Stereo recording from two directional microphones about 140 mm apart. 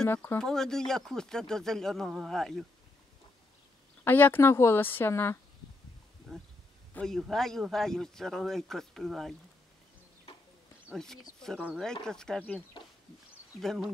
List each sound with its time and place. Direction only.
0.0 s a woman's voice: 15° left (ahead or behind)
4.0 s a woman's voice: 15° left (ahead or behind)
6.3 s a man's voice: 5° left (ahead or behind)
10.9 s a man's voice: 5° left (ahead or behind)
13.6 s a man's voice: centre (ahead or behind)